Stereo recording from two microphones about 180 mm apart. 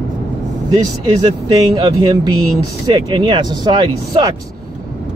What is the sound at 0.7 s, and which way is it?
Speech, 25° right (ahead or behind).